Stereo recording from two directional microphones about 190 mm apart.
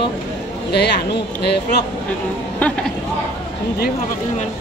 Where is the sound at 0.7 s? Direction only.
60° left (ahead or behind).